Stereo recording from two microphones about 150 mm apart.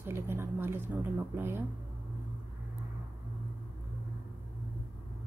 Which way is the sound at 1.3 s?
15° right (ahead or behind).